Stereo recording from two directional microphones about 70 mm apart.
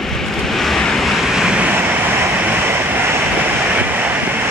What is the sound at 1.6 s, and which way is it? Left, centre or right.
Vehicle, right.